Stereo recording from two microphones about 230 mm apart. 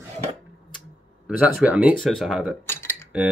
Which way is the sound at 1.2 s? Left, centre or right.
Centre.